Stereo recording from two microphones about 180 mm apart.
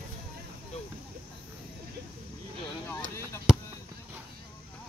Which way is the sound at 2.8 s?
15° left (ahead or behind).